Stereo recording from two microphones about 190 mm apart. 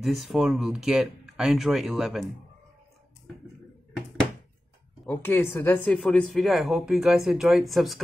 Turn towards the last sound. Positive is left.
turn(degrees=0)  # may be behind; listen again after turning